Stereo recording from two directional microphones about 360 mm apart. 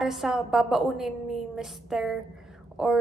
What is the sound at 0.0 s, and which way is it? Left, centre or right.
A woman's voice, centre.